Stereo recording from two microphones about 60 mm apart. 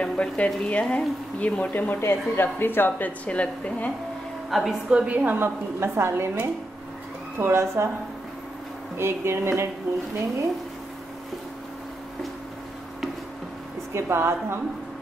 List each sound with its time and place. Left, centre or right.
0.0 s frying: centre
0.7 s speech: left
3.3 s a woman's voice: left
4.5 s a woman's voice: centre
4.8 s a woman's voice: centre
5.4 s a woman's voice: right
8.9 s a woman's voice: right
13.9 s a woman's voice: right